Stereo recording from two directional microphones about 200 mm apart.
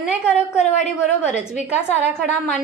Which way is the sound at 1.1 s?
35° left (ahead or behind).